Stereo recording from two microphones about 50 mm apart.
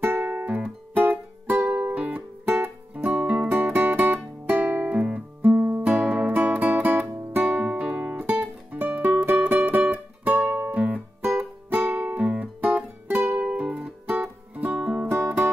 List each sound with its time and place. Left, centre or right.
0.0 s music: right
3.3 s music: right
15.0 s music: right